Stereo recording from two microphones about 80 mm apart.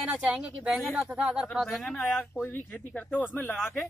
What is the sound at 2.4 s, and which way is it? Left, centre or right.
Speech, left.